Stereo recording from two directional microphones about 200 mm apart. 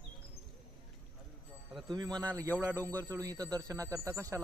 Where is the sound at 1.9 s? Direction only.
20° right (ahead or behind).